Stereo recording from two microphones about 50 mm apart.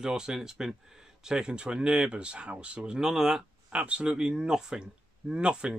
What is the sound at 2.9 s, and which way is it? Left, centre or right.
Speech, centre.